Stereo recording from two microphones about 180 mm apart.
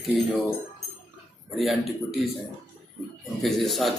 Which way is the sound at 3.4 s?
Centre (ahead or behind).